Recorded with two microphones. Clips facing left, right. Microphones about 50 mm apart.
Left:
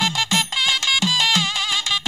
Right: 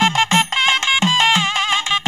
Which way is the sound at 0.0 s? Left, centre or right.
Right.